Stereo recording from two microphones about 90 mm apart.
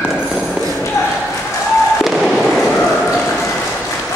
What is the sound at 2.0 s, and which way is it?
Fireworks, centre (ahead or behind).